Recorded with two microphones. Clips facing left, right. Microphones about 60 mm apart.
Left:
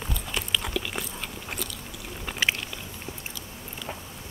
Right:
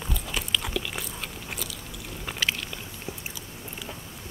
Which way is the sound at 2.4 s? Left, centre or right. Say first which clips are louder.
Left 2 dB; left.